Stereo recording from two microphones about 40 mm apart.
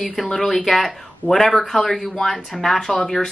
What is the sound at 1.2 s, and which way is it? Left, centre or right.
Speech, left.